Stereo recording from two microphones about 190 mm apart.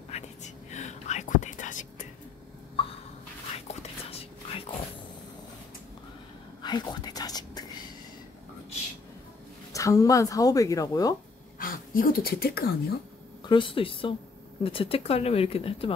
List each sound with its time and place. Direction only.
0.1 s whispering: 40° left (ahead or behind)
2.8 s a sound: 30° left (ahead or behind)
3.5 s dog: 30° left (ahead or behind)
6.6 s whispering: 20° left (ahead or behind)
9.7 s speech: 15° left (ahead or behind)
11.6 s speech: 50° left (ahead or behind)
13.4 s speech: 25° left (ahead or behind)